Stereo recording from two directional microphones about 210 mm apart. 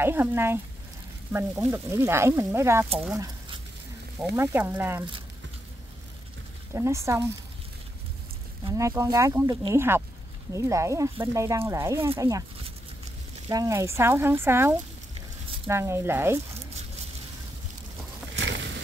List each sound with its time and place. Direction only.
0.0 s speech: 10° right (ahead or behind)
6.7 s speech: 15° right (ahead or behind)
8.6 s speech: 15° right (ahead or behind)
13.5 s speech: 15° right (ahead or behind)
18.3 s a sound: 55° right (ahead or behind)